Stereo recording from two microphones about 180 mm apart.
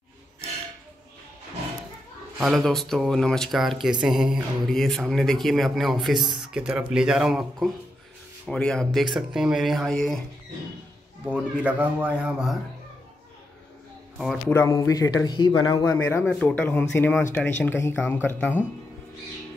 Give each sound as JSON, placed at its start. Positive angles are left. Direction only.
{"t": 2.4, "sound": "speech", "side_deg": 0}
{"t": 6.2, "sound": "a sound", "side_deg": -25}
{"t": 6.5, "sound": "speech", "side_deg": -5}
{"t": 11.2, "sound": "speech", "side_deg": -5}
{"t": 14.1, "sound": "speech", "side_deg": 0}
{"t": 14.5, "sound": "a man's voice", "side_deg": 15}